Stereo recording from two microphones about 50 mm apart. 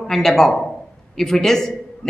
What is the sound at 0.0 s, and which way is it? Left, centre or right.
A woman's voice, centre.